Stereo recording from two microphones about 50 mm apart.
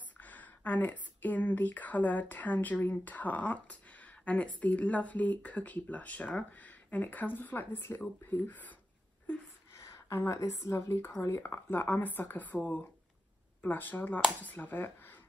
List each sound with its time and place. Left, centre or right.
0.2 s a woman's voice: left
9.8 s a woman's voice: left
13.6 s a woman's voice: left